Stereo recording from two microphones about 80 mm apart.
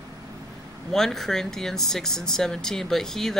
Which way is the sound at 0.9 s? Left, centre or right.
Centre.